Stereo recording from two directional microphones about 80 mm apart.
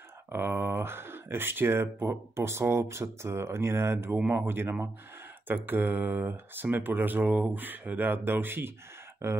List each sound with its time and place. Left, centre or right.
0.3 s speech: right